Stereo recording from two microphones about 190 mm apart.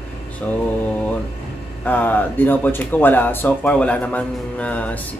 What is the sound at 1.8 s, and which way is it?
Speech, 10° left (ahead or behind).